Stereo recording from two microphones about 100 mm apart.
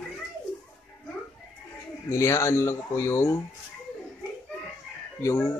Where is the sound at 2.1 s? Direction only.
30° left (ahead or behind).